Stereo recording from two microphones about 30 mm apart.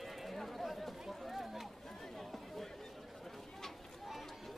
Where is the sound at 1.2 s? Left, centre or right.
Centre.